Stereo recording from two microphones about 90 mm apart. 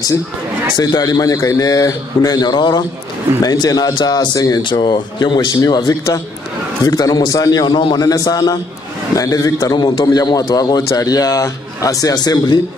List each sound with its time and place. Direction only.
0.7 s a man's voice: 45° left (ahead or behind)
8.0 s a man's voice: 45° left (ahead or behind)
9.8 s a man's voice: 60° left (ahead or behind)